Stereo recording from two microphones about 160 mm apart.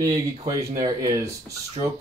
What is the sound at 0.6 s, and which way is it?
Speech, 25° right (ahead or behind).